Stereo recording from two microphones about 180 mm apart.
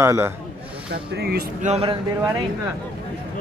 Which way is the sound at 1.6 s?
35° right (ahead or behind).